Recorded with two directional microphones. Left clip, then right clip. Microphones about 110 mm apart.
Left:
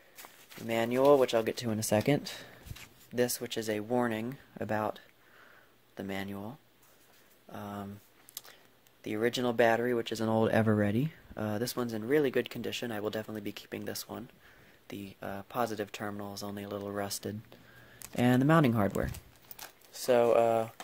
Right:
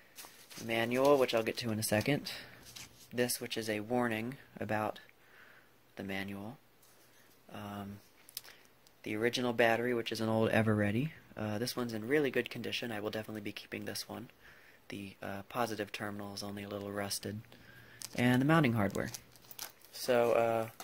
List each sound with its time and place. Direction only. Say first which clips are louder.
0.7 s speech: left 4 dB; 25° left (ahead or behind)
7.5 s speech: left 3 dB; 30° left (ahead or behind)
8.4 s a sound: even; 35° left (ahead or behind)
9.0 s speech: left 3 dB; 30° left (ahead or behind)
16.3 s speech: left 3 dB; 30° left (ahead or behind)
19.9 s speech: left 4 dB; 30° left (ahead or behind)